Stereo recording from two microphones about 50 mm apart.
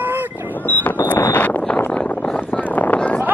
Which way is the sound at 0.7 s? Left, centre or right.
Left.